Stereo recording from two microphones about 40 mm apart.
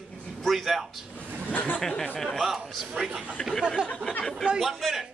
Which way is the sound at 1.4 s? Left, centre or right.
Left.